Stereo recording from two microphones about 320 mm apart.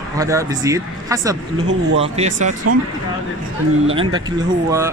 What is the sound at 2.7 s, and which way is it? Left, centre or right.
Speech, right.